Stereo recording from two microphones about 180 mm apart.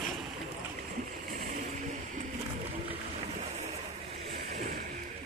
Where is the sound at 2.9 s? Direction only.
35° right (ahead or behind).